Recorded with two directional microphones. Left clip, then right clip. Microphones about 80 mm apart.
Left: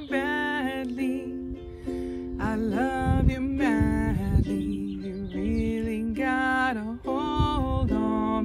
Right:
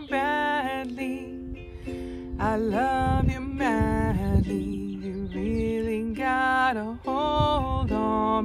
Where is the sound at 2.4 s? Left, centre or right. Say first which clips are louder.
Right 4 dB; right.